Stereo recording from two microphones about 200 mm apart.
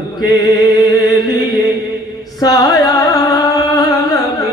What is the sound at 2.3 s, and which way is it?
Music, 20° left (ahead or behind).